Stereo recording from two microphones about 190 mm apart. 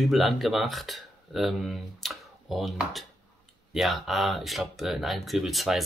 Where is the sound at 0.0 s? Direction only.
Centre (ahead or behind).